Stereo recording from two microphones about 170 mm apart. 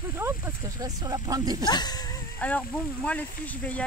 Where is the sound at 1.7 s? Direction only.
25° left (ahead or behind).